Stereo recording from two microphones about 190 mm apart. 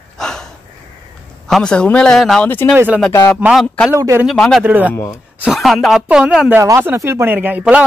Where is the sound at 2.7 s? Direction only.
10° right (ahead or behind).